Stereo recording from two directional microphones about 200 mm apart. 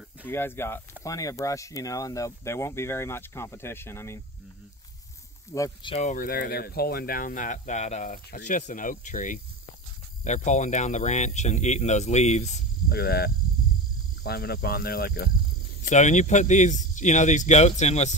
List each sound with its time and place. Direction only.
0.3 s speech: 10° left (ahead or behind)
5.5 s speech: 20° left (ahead or behind)
6.0 s speech: 45° left (ahead or behind)
12.9 s speech: 50° left (ahead or behind)
15.8 s speech: 35° left (ahead or behind)